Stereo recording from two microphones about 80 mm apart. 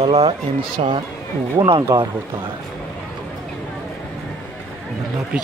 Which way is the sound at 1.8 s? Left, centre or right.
Right.